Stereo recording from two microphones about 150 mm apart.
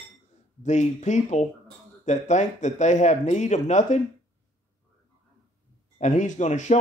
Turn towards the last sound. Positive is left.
turn(degrees=50)  # may be behind; listen again after turning